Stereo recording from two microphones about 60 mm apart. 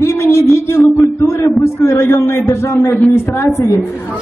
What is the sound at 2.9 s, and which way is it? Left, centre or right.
Speech, left.